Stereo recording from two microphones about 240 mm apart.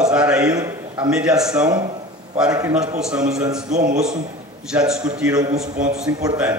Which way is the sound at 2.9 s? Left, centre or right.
Centre.